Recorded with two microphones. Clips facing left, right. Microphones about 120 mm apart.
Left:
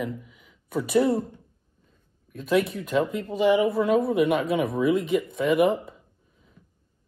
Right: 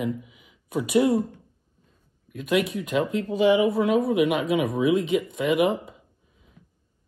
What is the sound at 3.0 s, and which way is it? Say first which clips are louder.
Speech: right 1 dB; centre (ahead or behind).